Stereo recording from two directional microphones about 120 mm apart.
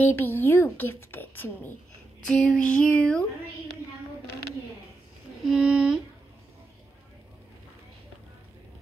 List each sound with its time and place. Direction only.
0.0 s speech: 15° left (ahead or behind)
2.2 s speech: 5° left (ahead or behind)
5.5 s speech: 5° right (ahead or behind)